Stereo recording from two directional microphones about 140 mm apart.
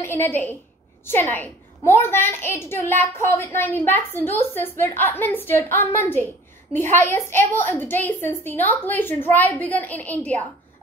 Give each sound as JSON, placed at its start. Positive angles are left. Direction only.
{"t": 0.0, "sound": "a woman's voice", "side_deg": 15}